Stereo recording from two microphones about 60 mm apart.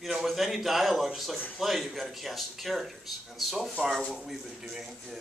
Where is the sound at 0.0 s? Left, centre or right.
Centre.